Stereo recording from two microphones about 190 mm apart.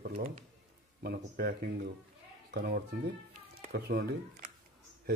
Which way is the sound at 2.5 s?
55° right (ahead or behind).